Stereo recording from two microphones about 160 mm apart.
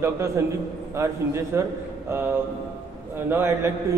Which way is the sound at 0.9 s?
15° right (ahead or behind).